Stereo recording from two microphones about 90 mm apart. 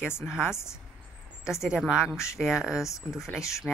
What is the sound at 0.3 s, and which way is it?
Speech, 5° right (ahead or behind).